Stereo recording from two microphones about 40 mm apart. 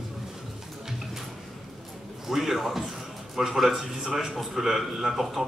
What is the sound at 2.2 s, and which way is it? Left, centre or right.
A man's voice, centre.